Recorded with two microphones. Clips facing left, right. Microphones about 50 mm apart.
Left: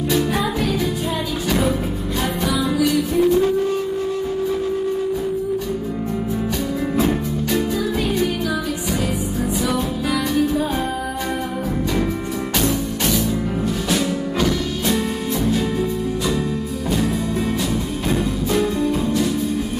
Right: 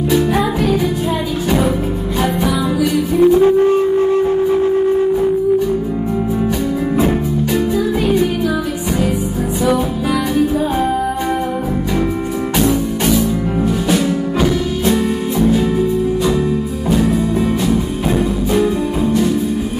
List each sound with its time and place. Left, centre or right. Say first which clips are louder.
2.4 s music: right 3 dB; centre
3.3 s music: right 7 dB; right
7.0 s music: right 3 dB; centre
13.6 s music: right 7 dB; centre